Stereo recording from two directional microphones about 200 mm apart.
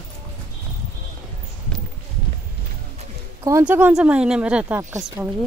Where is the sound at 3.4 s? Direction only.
10° right (ahead or behind).